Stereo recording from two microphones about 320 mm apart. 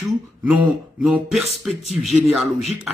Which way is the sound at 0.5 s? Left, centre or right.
Centre.